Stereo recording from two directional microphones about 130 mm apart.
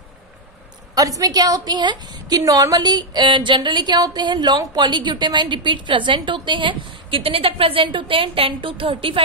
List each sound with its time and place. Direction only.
0.9 s a woman's voice: 25° right (ahead or behind); by 9.2 s 45° right (ahead or behind)